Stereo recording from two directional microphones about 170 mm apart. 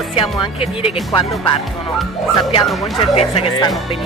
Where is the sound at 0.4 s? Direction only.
35° left (ahead or behind).